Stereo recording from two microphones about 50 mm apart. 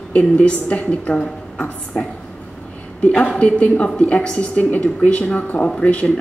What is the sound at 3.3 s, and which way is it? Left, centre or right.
A woman's voice, left.